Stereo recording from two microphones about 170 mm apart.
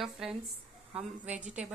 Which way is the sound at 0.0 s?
5° right (ahead or behind).